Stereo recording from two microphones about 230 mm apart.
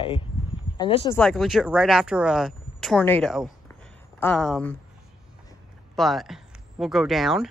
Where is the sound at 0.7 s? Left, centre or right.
Left.